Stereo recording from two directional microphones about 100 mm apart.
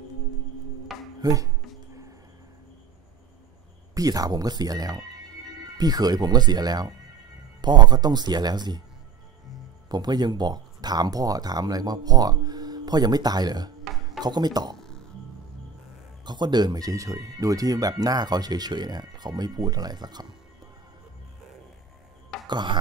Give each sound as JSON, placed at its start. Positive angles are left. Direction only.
{"t": 0.9, "sound": "music", "side_deg": 0}
{"t": 1.2, "sound": "speech", "side_deg": -35}
{"t": 3.9, "sound": "speech", "side_deg": -40}
{"t": 9.8, "sound": "speech", "side_deg": -45}
{"t": 13.9, "sound": "music", "side_deg": 0}
{"t": 14.2, "sound": "speech", "side_deg": -45}
{"t": 14.8, "sound": "music", "side_deg": 5}
{"t": 16.3, "sound": "speech", "side_deg": -45}
{"t": 22.5, "sound": "speech", "side_deg": -50}